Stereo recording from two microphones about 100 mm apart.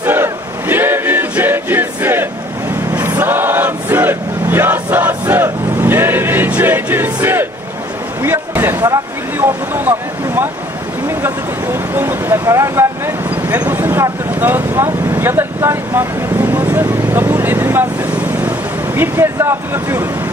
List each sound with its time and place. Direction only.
0.0 s choir: 20° right (ahead or behind)
2.9 s vehicle: 20° right (ahead or behind)
5.3 s choir: 20° right (ahead or behind)
8.2 s a sound: 25° right (ahead or behind)
9.4 s vehicle: 20° right (ahead or behind)
18.9 s speech: 25° right (ahead or behind)